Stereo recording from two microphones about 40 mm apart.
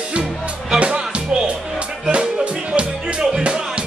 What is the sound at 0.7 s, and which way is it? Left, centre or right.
Music, right.